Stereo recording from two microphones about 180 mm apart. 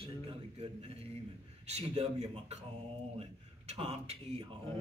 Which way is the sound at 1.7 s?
35° right (ahead or behind).